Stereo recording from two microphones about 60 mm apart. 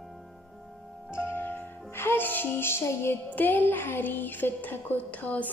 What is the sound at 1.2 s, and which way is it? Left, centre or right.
Music, left.